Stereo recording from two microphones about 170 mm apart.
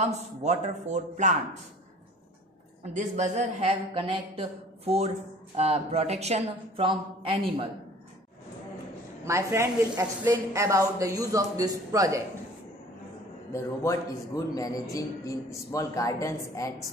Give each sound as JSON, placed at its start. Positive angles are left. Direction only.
{"t": 0.0, "sound": "speech", "side_deg": -40}
{"t": 2.8, "sound": "speech", "side_deg": -45}
{"t": 9.2, "sound": "a woman's voice", "side_deg": -15}
{"t": 13.5, "sound": "a man's voice", "side_deg": 15}